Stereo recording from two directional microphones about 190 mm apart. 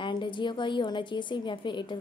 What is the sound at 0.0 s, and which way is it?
A woman's voice, 25° left (ahead or behind).